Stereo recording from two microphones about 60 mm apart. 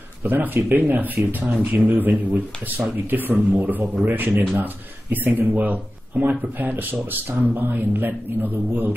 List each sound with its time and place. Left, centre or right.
0.2 s a man's voice: right